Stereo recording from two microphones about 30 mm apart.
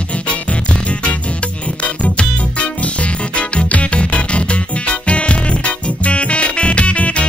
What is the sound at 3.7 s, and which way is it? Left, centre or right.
Music, left.